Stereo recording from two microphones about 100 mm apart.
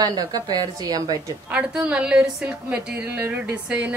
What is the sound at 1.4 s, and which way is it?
A woman's voice, 10° right (ahead or behind).